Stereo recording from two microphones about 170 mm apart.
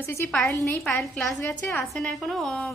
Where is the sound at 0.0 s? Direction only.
15° left (ahead or behind).